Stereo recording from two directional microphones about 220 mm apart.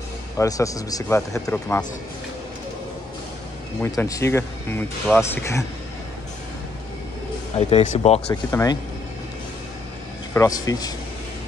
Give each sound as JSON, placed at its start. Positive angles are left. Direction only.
{"t": 0.4, "sound": "speech", "side_deg": 15}
{"t": 3.8, "sound": "speech", "side_deg": 15}
{"t": 7.5, "sound": "speech", "side_deg": 30}
{"t": 8.5, "sound": "speech", "side_deg": 15}
{"t": 10.3, "sound": "speech", "side_deg": 15}